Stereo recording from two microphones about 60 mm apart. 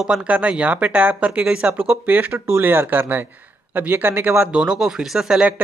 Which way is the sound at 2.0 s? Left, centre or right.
Right.